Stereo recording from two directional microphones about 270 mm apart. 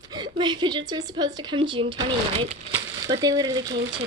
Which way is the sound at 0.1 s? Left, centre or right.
Centre.